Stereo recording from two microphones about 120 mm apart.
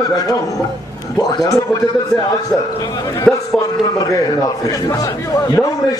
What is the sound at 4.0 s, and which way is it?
A man's voice, 30° left (ahead or behind).